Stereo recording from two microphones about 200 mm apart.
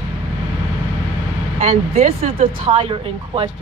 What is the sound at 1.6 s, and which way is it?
Speech, 40° right (ahead or behind).